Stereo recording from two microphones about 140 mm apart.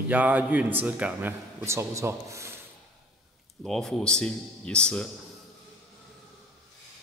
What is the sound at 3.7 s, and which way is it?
Speech, 5° left (ahead or behind).